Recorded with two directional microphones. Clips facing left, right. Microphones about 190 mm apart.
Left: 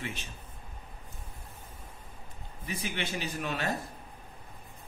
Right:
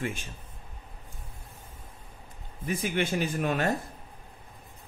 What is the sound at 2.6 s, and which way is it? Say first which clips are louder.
Speech: right 7 dB; 50° right (ahead or behind).